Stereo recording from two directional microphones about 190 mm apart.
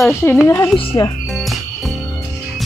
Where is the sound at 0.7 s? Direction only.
25° left (ahead or behind).